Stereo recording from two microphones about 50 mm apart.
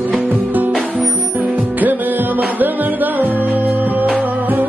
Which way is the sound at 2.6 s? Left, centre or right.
Right.